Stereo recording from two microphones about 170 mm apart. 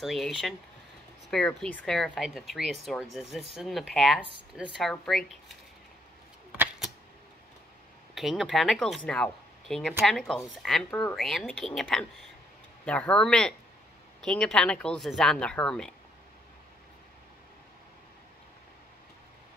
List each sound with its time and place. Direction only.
0.0 s speech: centre (ahead or behind)
8.1 s speech: centre (ahead or behind)
10.9 s speech: 15° left (ahead or behind)
11.1 s speech: centre (ahead or behind)